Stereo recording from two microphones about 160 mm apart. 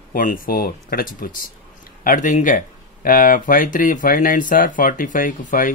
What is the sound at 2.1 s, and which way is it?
Speech, 50° left (ahead or behind).